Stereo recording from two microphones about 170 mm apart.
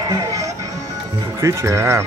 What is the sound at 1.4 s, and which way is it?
Speech, 15° right (ahead or behind).